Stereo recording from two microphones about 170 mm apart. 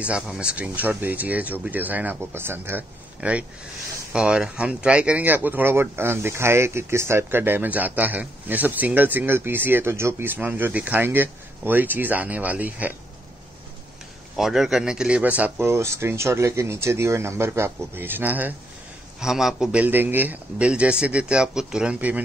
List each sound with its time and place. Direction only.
0.0 s speech: 5° right (ahead or behind)
14.3 s speech: centre (ahead or behind)